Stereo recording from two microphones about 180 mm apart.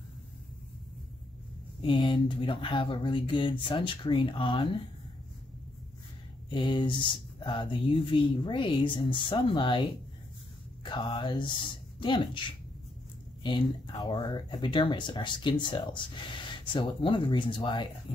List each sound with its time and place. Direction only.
1.8 s speech: 25° left (ahead or behind)
6.5 s speech: 25° left (ahead or behind)
10.8 s a sound: 25° left (ahead or behind)
12.0 s speech: 25° left (ahead or behind)
13.9 s speech: 25° left (ahead or behind)